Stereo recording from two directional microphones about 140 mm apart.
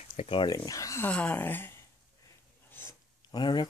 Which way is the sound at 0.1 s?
40° left (ahead or behind).